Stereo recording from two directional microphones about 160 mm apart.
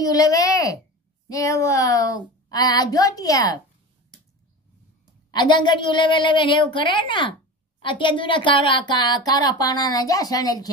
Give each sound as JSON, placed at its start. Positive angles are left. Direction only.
{"t": 0.1, "sound": "a child's voice", "side_deg": 20}
{"t": 5.3, "sound": "a woman's voice", "side_deg": 30}